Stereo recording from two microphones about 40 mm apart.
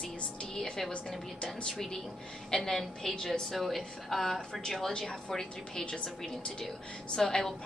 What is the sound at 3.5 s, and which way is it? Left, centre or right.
A woman's voice, centre.